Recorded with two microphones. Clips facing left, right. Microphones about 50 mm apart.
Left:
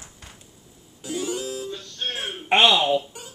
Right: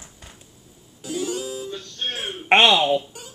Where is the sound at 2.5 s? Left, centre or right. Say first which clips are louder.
Right 2 dB; right.